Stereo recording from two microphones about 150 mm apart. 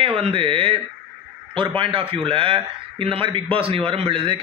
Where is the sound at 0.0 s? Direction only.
40° right (ahead or behind).